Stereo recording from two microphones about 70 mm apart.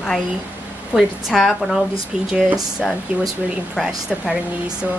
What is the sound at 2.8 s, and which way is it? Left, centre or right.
Speech, centre.